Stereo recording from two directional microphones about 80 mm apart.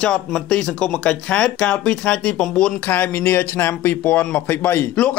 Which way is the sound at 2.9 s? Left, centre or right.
Left.